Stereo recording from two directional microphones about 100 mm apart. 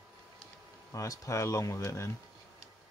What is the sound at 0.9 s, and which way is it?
Speech, 30° left (ahead or behind).